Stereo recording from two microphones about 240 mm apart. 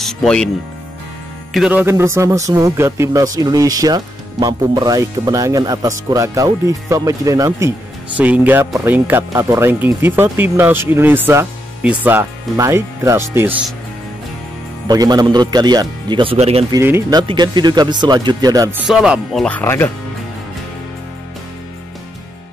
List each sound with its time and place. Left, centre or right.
0.0 s speech: centre
1.5 s speech: centre
14.9 s speech: centre
16.7 s speech: centre
18.9 s speech: centre